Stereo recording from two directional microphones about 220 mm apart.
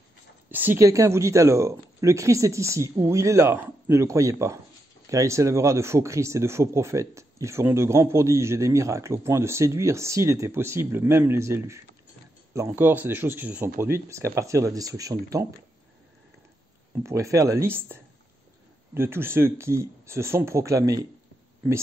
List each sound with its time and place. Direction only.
0.5 s speech: 10° right (ahead or behind)
17.0 s speech: 15° right (ahead or behind)
18.9 s speech: 10° right (ahead or behind)